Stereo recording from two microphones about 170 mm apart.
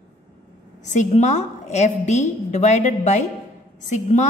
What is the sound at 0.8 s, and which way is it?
A woman's voice, 45° left (ahead or behind).